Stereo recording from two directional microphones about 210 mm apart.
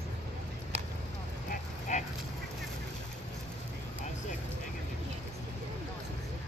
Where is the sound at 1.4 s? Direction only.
40° left (ahead or behind).